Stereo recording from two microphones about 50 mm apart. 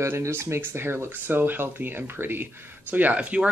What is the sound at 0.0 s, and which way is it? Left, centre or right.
Speech, right.